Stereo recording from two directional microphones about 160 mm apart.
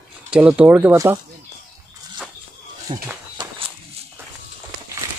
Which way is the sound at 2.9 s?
35° right (ahead or behind).